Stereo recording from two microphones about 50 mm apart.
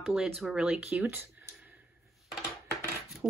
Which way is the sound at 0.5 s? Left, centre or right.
Centre.